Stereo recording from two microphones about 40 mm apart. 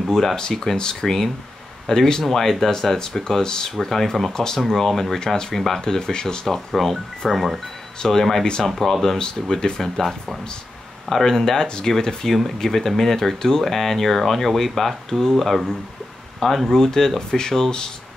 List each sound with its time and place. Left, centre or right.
0.1 s speech: centre
5.2 s speech: centre
5.5 s speech: centre
6.7 s speech: centre
8.0 s speech: centre
9.2 s speech: centre
11.1 s speech: centre